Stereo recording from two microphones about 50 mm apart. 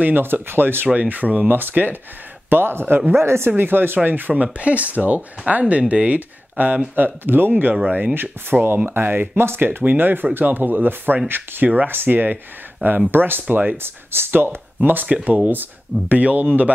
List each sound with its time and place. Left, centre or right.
0.0 s speech: right
0.8 s speech: right
3.5 s speech: right